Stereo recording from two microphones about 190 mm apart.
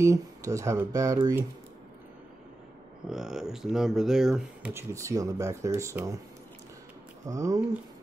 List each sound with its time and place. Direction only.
0.0 s speech: 15° right (ahead or behind)
3.1 s speech: 5° right (ahead or behind)
4.7 s speech: 15° right (ahead or behind)
7.2 s speech: 20° right (ahead or behind)